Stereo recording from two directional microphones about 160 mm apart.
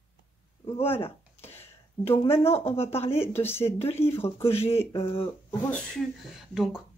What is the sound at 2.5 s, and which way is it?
Speech, 40° left (ahead or behind).